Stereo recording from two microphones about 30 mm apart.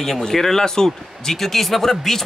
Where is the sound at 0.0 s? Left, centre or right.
Centre.